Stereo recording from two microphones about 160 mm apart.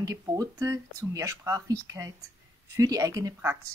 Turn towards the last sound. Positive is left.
turn(degrees=-20)  # may be behind; listen again after turning